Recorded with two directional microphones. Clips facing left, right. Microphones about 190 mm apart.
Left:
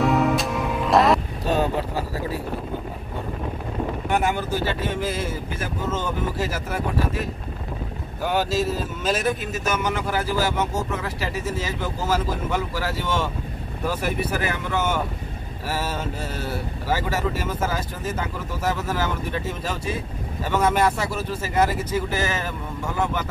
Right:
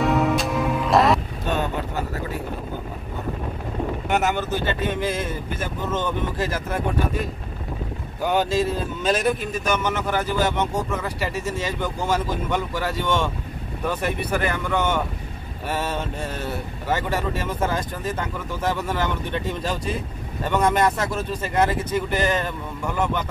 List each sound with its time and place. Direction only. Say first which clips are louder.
0.0 s music: even; centre (ahead or behind)
1.4 s vehicle: left 3 dB; 35° left (ahead or behind)
4.3 s speech: even; 10° left (ahead or behind)